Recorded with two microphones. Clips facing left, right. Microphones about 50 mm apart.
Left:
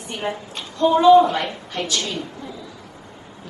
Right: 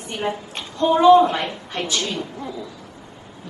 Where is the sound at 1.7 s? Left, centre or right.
Right.